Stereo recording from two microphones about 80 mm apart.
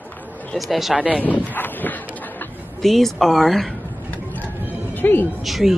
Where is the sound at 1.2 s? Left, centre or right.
Centre.